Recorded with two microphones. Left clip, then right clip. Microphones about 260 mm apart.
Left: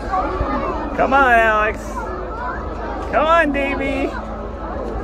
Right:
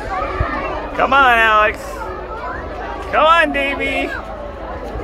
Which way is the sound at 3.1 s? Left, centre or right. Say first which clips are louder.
Right 3 dB; centre.